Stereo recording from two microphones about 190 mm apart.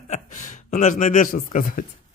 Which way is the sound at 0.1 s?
40° left (ahead or behind).